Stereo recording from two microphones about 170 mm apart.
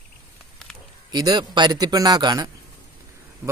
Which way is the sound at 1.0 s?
25° right (ahead or behind).